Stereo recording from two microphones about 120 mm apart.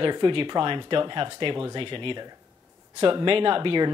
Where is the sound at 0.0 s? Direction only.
45° right (ahead or behind).